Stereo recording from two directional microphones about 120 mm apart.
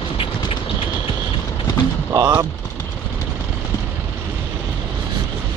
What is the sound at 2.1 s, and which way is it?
Speech, 30° right (ahead or behind).